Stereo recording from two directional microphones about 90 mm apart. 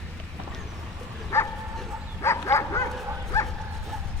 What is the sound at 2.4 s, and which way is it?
Dog, 35° left (ahead or behind).